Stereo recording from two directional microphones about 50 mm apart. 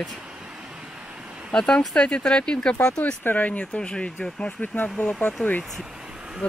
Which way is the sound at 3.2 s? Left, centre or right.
Left.